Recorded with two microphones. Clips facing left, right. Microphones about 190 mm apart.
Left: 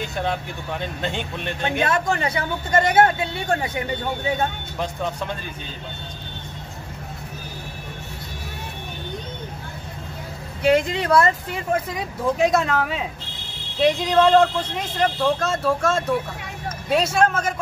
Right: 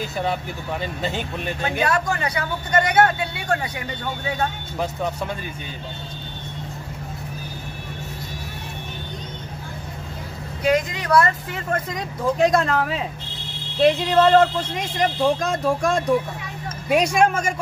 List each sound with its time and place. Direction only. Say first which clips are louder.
0.0 s speech: right 1 dB; 5° right (ahead or behind)
1.6 s speech: even; 25° left (ahead or behind)
10.7 s speech: left 1 dB; 30° left (ahead or behind)
11.5 s speech: left 2 dB; 5° left (ahead or behind); by 17.6 s 10° right (ahead or behind)